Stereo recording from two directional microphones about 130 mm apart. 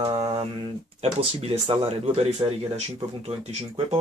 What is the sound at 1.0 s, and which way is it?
Speech, 45° right (ahead or behind).